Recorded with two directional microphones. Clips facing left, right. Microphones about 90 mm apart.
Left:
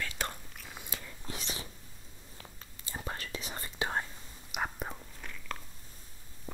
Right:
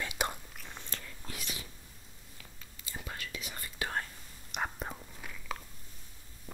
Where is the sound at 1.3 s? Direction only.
30° left (ahead or behind).